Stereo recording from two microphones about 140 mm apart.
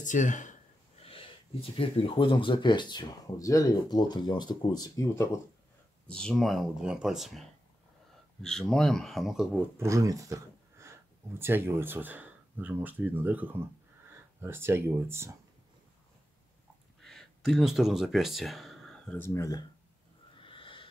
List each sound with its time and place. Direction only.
0.0 s speech: 65° left (ahead or behind)
1.0 s speech: 40° left (ahead or behind); by 5.4 s 20° left (ahead or behind)
6.0 s speech: 5° left (ahead or behind)
9.8 s speech: 20° right (ahead or behind)
17.0 s speech: 5° left (ahead or behind)
19.2 s speech: 20° left (ahead or behind)
20.3 s a sound: 40° left (ahead or behind)